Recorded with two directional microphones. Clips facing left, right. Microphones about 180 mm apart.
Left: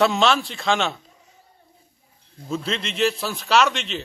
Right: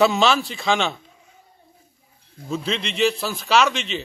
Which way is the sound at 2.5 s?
Centre (ahead or behind).